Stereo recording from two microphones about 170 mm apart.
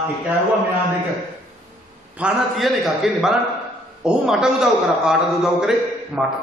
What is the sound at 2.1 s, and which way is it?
A man's voice, 5° right (ahead or behind).